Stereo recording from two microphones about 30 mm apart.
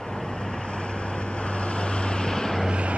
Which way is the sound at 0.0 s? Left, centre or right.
Left.